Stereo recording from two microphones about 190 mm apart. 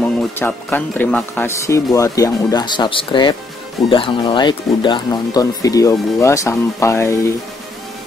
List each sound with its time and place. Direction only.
0.0 s speech: 10° left (ahead or behind)